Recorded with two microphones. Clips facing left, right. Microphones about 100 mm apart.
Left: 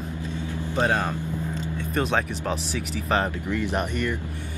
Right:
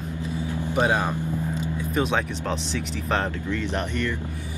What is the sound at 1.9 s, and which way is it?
Speech, centre (ahead or behind).